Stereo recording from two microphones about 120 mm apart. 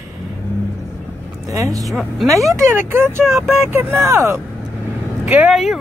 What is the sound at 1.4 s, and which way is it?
Speech, 30° right (ahead or behind).